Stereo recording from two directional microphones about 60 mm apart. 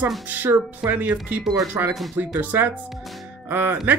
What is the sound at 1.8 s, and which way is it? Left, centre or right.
Speech, right.